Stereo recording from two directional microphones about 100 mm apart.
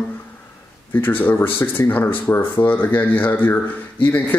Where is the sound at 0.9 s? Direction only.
20° left (ahead or behind).